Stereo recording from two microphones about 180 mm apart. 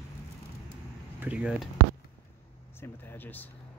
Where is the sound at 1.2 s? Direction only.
5° right (ahead or behind).